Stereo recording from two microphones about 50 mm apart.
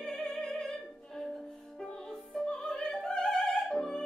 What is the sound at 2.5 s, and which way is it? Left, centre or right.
Music, centre.